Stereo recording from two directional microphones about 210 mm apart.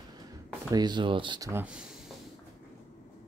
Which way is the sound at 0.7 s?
20° right (ahead or behind).